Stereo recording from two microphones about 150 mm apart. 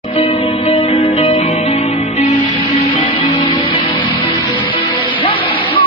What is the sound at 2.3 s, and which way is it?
Music, 35° left (ahead or behind).